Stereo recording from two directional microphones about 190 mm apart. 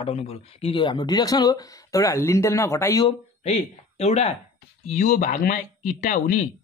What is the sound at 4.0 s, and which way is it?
Speech, 35° left (ahead or behind).